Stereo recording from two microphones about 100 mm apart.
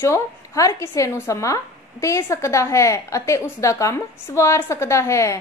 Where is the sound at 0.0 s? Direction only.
30° left (ahead or behind).